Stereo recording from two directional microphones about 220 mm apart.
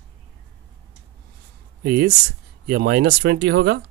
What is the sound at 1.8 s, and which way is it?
Speech, 50° right (ahead or behind).